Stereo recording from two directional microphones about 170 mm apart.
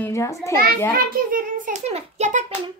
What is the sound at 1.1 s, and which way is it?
A child's voice, 55° right (ahead or behind).